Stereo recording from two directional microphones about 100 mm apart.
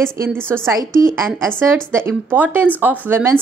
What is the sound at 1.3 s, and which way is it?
Speech, 20° right (ahead or behind).